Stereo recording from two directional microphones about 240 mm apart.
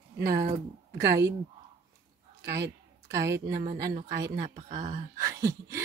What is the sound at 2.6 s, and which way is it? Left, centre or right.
Speech, centre.